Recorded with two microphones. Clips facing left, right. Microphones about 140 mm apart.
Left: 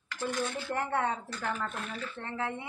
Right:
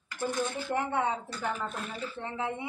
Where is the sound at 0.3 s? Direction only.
15° right (ahead or behind).